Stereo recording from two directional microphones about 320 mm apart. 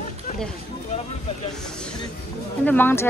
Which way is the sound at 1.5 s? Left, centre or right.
Centre.